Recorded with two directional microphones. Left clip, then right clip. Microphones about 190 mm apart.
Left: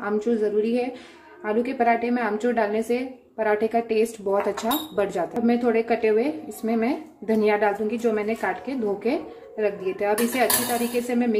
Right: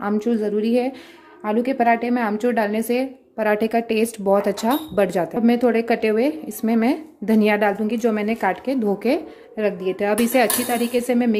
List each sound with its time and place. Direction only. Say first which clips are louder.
0.0 s a woman's voice: right 1 dB; 50° right (ahead or behind)